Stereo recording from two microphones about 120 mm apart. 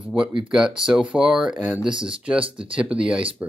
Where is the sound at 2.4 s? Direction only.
45° right (ahead or behind).